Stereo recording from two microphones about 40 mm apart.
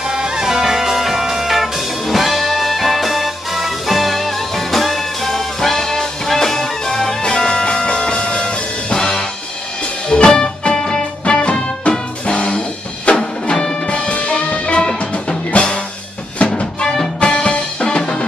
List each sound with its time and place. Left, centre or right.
0.1 s music: centre
11.2 s music: left